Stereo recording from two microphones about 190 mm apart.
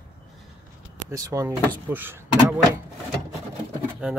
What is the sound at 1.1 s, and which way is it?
Speech, 15° right (ahead or behind).